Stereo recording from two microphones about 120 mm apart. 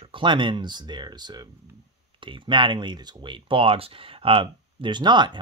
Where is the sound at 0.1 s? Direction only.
40° right (ahead or behind).